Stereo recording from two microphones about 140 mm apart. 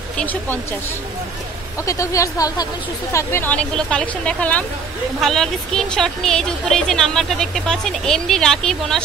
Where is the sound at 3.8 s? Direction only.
5° left (ahead or behind).